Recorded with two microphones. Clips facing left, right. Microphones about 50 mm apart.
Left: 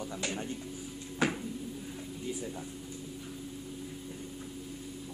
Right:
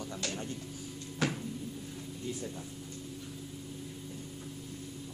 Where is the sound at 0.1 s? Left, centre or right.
Centre.